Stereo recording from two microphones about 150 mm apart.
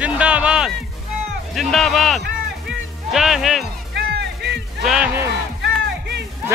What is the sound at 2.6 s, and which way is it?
Music, centre (ahead or behind).